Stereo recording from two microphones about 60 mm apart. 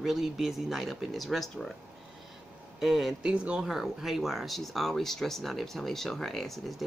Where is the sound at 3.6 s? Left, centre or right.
Centre.